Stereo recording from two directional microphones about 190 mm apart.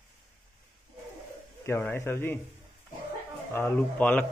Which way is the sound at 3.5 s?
10° left (ahead or behind).